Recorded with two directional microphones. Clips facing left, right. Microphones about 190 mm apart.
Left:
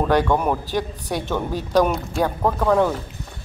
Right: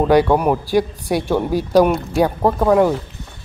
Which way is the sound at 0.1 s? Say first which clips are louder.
Right 5 dB; 10° right (ahead or behind).